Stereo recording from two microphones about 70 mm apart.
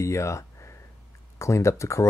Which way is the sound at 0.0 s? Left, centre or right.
Left.